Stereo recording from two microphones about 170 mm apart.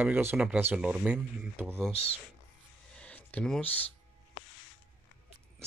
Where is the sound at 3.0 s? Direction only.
10° left (ahead or behind).